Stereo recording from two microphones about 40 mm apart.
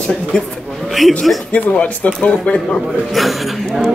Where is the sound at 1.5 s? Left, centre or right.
Left.